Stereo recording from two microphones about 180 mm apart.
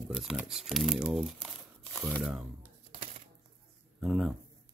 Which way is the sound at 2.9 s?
30° right (ahead or behind).